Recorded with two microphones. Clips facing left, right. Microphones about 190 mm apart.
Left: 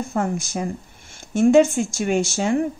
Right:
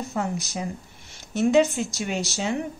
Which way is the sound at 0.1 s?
50° left (ahead or behind).